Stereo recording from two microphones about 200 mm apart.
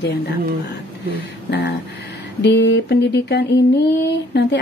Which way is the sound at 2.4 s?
60° left (ahead or behind).